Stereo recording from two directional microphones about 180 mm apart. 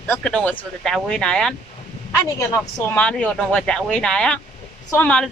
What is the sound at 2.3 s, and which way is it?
Speech, 20° left (ahead or behind).